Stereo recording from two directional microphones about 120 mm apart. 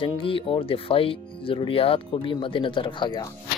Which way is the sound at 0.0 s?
45° left (ahead or behind).